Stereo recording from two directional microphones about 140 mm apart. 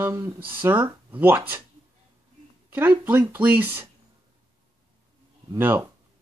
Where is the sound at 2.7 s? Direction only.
15° right (ahead or behind).